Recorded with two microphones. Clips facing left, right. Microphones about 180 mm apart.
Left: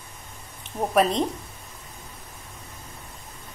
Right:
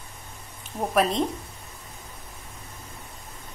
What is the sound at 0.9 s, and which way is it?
Speech, centre (ahead or behind).